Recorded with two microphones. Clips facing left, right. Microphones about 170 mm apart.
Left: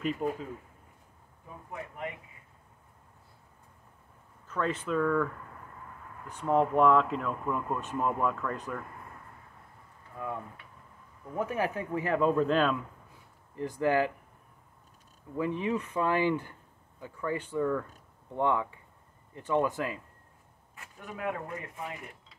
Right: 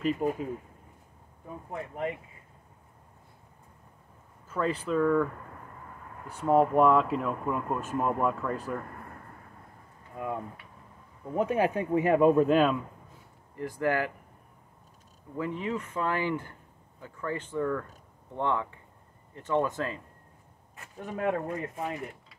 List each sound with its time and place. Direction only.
0.0 s speech: centre (ahead or behind)
1.7 s speech: 35° right (ahead or behind)
4.5 s speech: 5° right (ahead or behind)
6.4 s speech: 10° right (ahead or behind)
10.1 s speech: 20° right (ahead or behind)
13.6 s speech: 20° left (ahead or behind)
15.3 s speech: 15° left (ahead or behind)
20.7 s speech: 35° right (ahead or behind)